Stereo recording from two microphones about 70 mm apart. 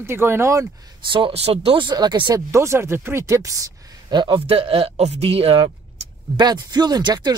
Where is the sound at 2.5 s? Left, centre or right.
Right.